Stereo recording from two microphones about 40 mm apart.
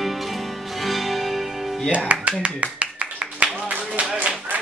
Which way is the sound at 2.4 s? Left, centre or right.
Right.